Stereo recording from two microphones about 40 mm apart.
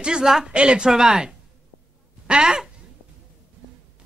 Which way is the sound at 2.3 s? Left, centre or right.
Centre.